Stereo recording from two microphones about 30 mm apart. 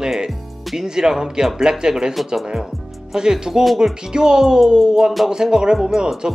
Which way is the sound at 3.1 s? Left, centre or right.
Right.